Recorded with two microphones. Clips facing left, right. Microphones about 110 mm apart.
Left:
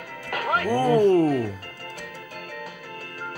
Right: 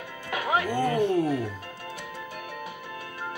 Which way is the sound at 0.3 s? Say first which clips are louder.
Left 1 dB; 15° right (ahead or behind).